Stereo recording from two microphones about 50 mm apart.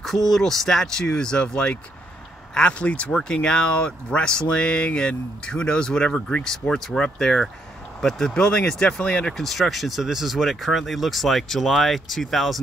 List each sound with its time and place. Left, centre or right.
0.0 s speech: centre
9.4 s speech: centre